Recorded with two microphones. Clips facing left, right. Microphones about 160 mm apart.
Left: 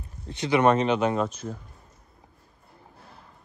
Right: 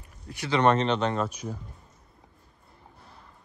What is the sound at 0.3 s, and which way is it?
Speech, 20° left (ahead or behind).